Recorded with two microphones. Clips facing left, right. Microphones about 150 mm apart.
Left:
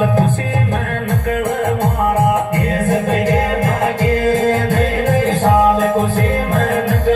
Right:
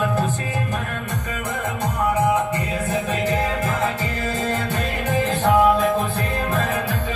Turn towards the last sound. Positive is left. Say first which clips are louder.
# left 7 dB
turn(degrees=45)  # may be behind; listen again after turning